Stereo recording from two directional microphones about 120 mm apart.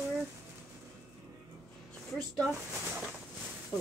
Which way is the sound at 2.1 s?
5° left (ahead or behind).